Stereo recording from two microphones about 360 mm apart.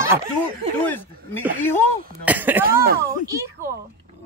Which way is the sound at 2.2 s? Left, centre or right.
Centre.